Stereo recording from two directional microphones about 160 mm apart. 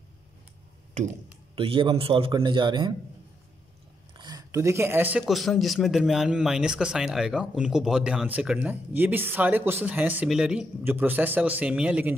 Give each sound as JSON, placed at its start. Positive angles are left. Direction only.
{"t": 1.5, "sound": "a man's voice", "side_deg": -35}
{"t": 4.2, "sound": "speech", "side_deg": -25}
{"t": 5.2, "sound": "a man's voice", "side_deg": 0}